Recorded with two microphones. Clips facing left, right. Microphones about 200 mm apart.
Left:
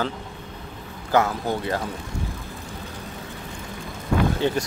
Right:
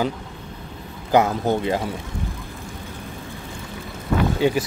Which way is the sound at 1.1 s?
20° right (ahead or behind).